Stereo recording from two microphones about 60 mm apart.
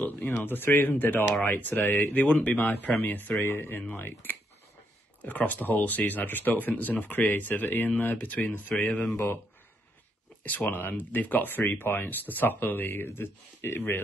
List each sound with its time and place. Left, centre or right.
0.4 s speech: left
2.1 s speech: left
10.4 s speech: left